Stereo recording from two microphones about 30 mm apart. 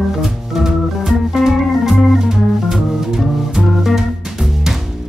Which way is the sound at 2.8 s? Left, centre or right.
Centre.